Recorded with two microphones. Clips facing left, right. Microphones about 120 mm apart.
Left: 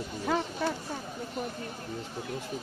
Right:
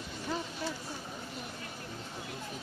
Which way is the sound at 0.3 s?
90° left.